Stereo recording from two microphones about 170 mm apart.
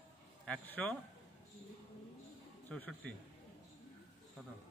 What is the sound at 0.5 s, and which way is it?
Speech, 10° left (ahead or behind).